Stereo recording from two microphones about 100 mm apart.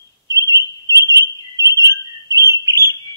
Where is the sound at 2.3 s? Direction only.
35° right (ahead or behind).